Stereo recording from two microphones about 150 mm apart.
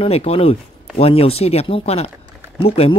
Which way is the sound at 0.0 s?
40° left (ahead or behind).